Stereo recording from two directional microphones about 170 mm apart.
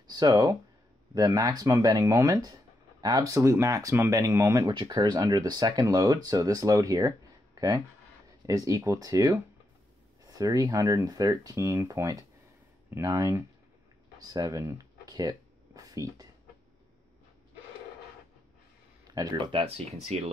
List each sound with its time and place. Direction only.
0.1 s speech: 20° right (ahead or behind)
14.2 s a sound: 20° right (ahead or behind)
19.0 s speech: 20° right (ahead or behind); by 20.3 s 40° right (ahead or behind)